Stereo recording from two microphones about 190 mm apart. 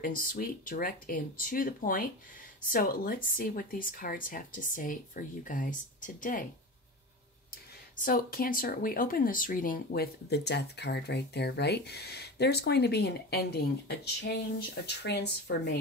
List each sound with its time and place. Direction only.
0.0 s a woman's voice: 45° left (ahead or behind)
7.9 s speech: 45° left (ahead or behind); by 15.8 s 60° left (ahead or behind)